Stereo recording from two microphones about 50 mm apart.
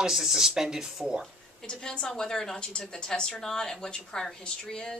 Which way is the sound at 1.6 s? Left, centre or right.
Centre.